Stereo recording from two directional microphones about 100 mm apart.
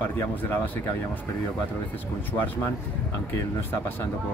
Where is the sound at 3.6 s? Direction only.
20° left (ahead or behind).